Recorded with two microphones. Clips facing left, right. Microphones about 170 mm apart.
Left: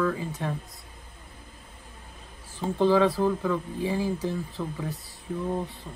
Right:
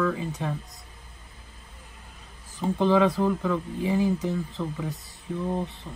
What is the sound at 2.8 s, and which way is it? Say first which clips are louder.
Speech: even; 15° right (ahead or behind).